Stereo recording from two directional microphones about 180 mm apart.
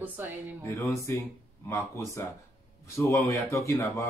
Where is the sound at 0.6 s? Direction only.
15° left (ahead or behind).